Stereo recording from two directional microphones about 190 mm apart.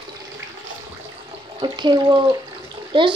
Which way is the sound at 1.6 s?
25° right (ahead or behind).